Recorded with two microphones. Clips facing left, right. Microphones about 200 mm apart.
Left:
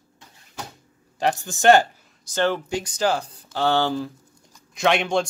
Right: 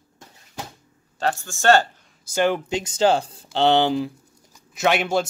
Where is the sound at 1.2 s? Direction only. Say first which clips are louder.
Left 2 dB; 15° left (ahead or behind).